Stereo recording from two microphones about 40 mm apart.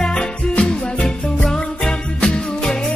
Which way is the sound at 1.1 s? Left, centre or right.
Centre.